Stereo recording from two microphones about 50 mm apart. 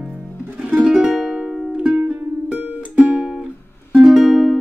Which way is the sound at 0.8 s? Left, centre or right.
Centre.